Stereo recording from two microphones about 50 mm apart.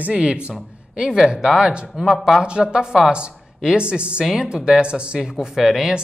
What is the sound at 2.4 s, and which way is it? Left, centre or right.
Speech, centre.